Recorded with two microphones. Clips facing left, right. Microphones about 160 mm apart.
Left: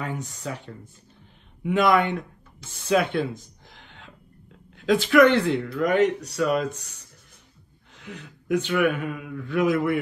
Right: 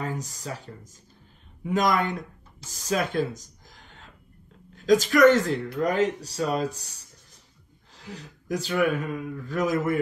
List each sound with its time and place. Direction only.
0.0 s speech: 35° right (ahead or behind)
1.7 s speech: 40° right (ahead or behind)